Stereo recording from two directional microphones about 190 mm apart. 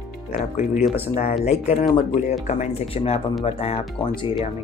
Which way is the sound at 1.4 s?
35° left (ahead or behind).